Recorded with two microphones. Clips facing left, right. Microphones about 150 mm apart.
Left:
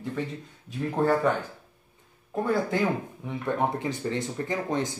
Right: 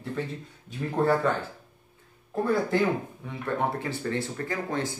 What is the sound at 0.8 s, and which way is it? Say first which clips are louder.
Speech: even; 5° left (ahead or behind).